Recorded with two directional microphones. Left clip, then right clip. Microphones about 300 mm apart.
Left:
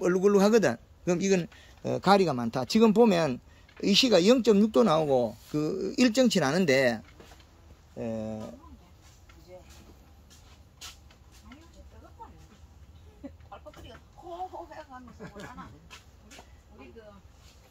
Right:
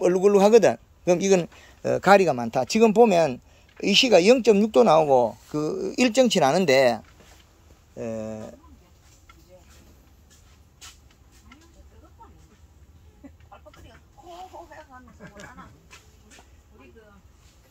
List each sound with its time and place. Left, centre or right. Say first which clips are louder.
0.0 s a man's voice: right 5 dB; centre
8.0 s a man's voice: right 3 dB; centre
13.5 s a sound: left 2 dB; left